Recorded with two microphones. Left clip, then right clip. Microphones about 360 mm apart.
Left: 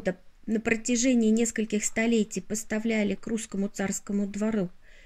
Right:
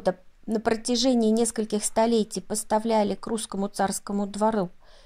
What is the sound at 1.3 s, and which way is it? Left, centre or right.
Speech, right.